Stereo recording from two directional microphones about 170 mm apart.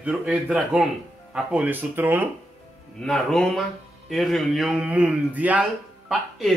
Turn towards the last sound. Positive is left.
turn(degrees=0)  # may be behind; listen again after turning